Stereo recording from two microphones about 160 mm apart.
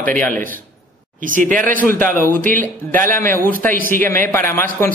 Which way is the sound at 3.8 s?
60° right (ahead or behind).